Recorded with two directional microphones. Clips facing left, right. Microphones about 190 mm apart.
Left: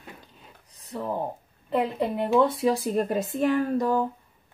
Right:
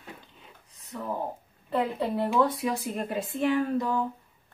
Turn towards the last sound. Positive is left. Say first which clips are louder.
# left 3 dB
turn(degrees=40)  # may be behind; listen again after turning